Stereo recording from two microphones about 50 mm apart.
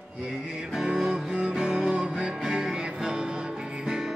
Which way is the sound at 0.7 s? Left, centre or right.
Centre.